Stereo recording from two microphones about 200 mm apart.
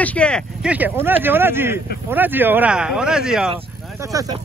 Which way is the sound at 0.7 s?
10° right (ahead or behind).